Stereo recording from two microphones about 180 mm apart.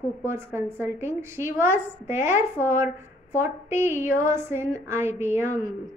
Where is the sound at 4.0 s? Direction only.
15° right (ahead or behind).